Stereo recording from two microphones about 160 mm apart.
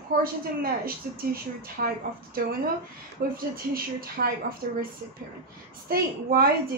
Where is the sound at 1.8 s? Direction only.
80° right.